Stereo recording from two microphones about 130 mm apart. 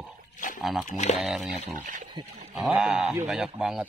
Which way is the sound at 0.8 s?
65° left (ahead or behind).